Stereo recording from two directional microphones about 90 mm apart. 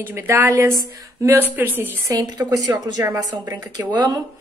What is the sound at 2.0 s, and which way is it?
A woman's voice, 45° right (ahead or behind).